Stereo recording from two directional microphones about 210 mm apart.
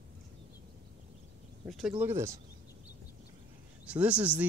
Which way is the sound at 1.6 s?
Centre (ahead or behind).